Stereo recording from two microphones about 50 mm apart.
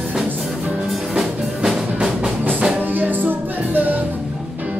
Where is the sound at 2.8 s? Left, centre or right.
Right.